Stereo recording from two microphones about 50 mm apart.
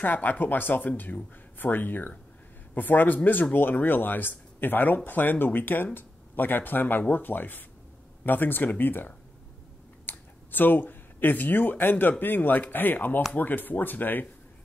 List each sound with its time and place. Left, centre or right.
0.0 s speech: left